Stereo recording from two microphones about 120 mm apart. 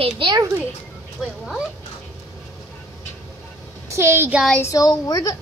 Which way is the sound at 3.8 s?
20° right (ahead or behind).